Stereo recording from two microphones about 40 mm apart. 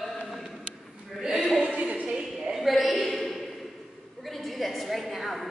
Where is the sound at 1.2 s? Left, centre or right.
Centre.